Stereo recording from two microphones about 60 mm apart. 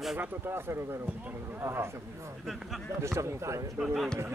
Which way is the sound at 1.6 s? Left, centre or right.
Right.